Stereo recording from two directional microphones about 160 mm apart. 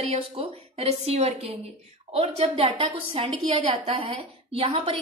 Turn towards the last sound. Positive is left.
turn(degrees=-35)  # may be behind; listen again after turning